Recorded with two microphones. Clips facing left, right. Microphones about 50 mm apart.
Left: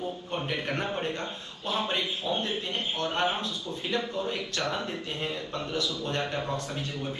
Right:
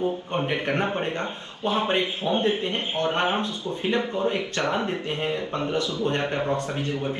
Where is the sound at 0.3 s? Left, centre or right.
Right.